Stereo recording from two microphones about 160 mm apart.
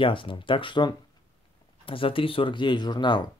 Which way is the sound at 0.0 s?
30° left (ahead or behind).